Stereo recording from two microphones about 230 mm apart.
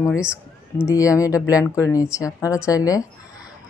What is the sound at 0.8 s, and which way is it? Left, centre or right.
A woman's voice, centre.